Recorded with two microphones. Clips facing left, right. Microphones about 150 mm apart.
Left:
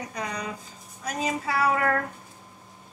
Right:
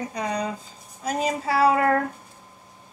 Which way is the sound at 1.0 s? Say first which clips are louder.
Right 4 dB; 30° right (ahead or behind).